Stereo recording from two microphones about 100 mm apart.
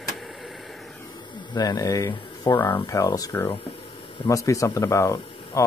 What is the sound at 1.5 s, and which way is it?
Speech, 40° left (ahead or behind).